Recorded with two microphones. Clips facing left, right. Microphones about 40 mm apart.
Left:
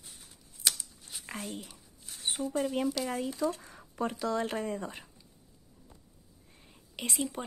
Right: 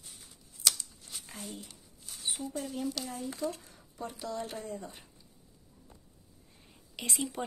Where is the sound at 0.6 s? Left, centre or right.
Left.